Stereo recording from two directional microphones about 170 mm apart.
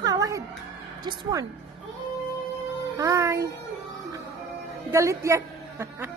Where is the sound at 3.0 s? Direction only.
20° right (ahead or behind).